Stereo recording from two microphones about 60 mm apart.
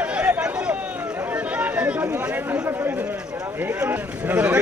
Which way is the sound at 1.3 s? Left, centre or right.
Right.